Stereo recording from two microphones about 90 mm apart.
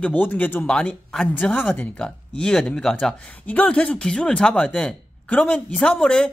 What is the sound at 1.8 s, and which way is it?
Speech, 10° left (ahead or behind).